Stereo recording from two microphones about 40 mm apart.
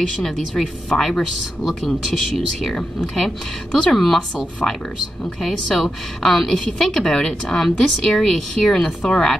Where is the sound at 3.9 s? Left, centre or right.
Centre.